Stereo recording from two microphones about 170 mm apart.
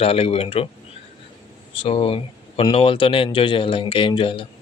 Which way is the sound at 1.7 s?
35° left (ahead or behind).